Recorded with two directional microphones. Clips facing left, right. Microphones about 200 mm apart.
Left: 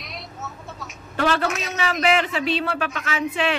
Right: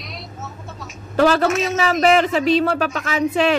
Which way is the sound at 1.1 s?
40° right (ahead or behind).